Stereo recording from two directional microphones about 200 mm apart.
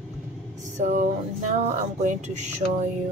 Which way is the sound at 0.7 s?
35° right (ahead or behind).